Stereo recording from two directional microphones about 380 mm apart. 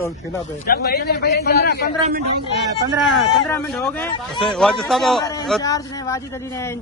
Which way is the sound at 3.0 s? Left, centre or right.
Centre.